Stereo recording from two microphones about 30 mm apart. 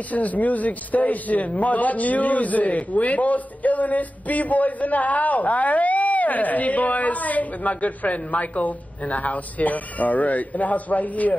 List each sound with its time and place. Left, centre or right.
0.1 s a man's voice: left